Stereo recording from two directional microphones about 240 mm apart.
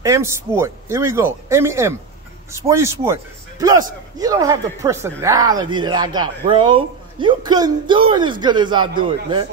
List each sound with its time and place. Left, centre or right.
0.0 s a man's voice: centre